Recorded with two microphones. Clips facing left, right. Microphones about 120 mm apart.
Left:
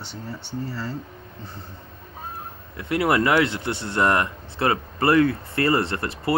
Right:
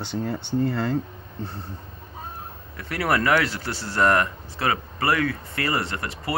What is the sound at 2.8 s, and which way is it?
Speech, 25° left (ahead or behind).